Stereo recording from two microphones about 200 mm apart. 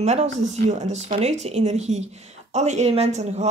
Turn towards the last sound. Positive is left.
turn(degrees=-30)  # may be behind; listen again after turning